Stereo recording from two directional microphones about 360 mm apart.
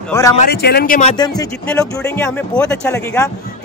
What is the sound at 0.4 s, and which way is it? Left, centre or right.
Speech, left.